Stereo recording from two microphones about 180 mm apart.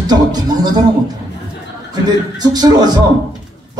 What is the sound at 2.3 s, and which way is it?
Speech, 20° right (ahead or behind).